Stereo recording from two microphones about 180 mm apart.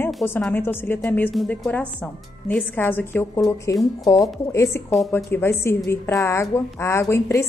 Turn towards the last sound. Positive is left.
turn(degrees=15)  # may be behind; listen again after turning